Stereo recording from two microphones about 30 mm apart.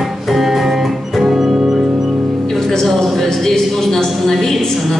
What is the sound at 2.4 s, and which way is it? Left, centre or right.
Music, centre.